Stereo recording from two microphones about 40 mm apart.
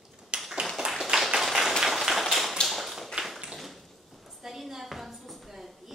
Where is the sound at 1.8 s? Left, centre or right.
Centre.